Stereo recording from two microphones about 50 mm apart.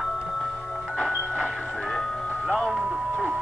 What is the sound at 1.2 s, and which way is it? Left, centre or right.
Music, right.